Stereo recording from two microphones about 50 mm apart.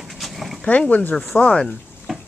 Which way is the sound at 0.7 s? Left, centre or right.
Left.